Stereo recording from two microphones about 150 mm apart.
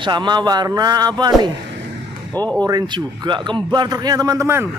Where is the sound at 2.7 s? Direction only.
25° right (ahead or behind).